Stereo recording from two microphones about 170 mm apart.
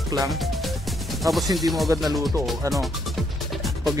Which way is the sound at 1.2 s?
Centre (ahead or behind).